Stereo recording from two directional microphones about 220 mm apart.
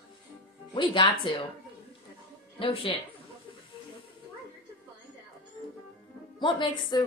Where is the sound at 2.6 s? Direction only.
25° left (ahead or behind).